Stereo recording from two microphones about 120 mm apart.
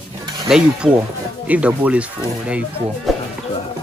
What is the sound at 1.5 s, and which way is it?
Speech, 10° right (ahead or behind).